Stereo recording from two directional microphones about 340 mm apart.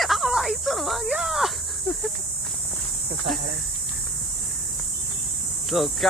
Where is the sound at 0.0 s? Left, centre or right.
Centre.